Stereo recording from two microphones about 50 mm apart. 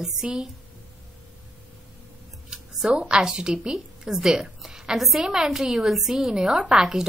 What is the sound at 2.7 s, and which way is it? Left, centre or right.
A woman's voice, centre.